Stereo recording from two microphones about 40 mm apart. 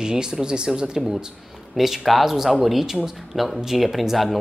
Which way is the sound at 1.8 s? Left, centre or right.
Centre.